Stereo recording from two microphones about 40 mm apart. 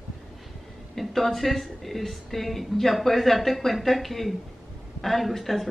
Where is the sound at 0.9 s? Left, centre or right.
Centre.